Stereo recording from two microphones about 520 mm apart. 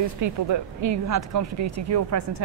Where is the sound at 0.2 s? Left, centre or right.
Right.